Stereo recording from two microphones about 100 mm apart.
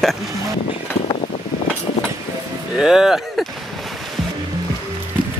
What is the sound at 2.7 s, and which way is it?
Speech, 5° right (ahead or behind).